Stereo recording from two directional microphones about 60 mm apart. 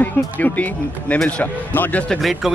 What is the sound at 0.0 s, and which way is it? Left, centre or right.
A man's voice, left.